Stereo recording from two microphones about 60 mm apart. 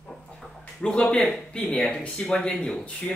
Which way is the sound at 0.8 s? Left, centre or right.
Centre.